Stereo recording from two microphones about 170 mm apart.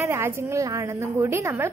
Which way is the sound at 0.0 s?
15° right (ahead or behind).